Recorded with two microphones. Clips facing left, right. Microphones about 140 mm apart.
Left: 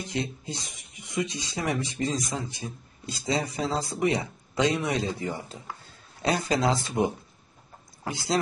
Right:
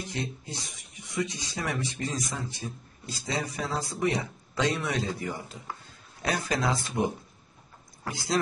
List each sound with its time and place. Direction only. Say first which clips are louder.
0.1 s speech: left 3 dB; 20° left (ahead or behind)